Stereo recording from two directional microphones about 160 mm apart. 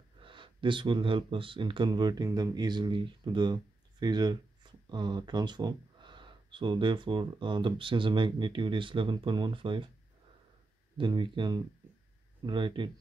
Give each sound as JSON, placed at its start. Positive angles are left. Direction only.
{"t": 0.2, "sound": "speech", "side_deg": -30}
{"t": 11.0, "sound": "speech", "side_deg": -30}